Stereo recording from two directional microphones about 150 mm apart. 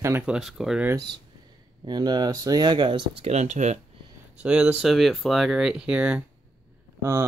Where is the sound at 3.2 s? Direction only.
50° right (ahead or behind).